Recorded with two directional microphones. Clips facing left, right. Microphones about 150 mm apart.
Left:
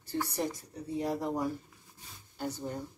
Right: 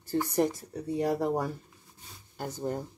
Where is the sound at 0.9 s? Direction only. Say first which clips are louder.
Right 4 dB; 65° right (ahead or behind).